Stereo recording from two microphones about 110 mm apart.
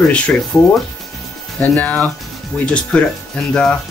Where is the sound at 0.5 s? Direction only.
10° left (ahead or behind).